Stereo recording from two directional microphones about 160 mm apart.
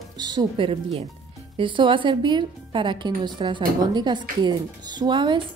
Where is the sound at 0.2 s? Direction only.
25° right (ahead or behind).